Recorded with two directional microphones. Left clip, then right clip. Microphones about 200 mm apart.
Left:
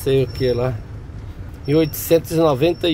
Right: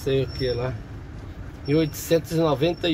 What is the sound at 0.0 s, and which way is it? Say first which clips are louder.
Speech: left 6 dB; 30° left (ahead or behind).